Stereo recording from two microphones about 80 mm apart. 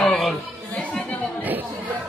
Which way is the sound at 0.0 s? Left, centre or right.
Centre.